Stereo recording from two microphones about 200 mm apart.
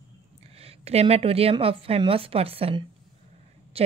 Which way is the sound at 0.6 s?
30° right (ahead or behind).